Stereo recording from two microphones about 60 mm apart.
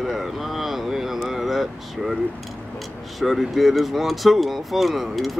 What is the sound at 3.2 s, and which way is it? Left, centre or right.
Speech, centre.